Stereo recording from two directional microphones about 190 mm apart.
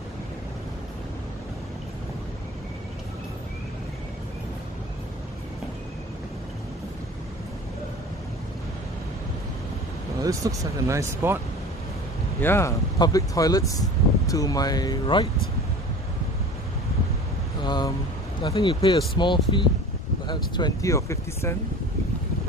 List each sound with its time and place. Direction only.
10.2 s speech: 15° right (ahead or behind)
12.4 s speech: 10° left (ahead or behind)
17.6 s vehicle: 20° left (ahead or behind)
18.4 s speech: 25° left (ahead or behind)